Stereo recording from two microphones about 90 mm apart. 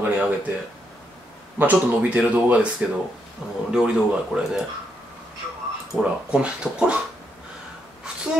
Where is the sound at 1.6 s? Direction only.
20° right (ahead or behind).